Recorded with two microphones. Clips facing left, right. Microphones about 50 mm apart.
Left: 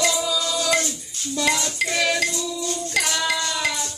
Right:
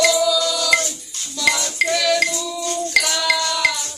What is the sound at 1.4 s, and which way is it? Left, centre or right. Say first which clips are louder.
Music: right 5 dB; right.